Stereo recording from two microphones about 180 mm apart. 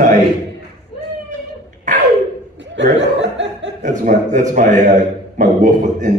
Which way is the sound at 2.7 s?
85° right.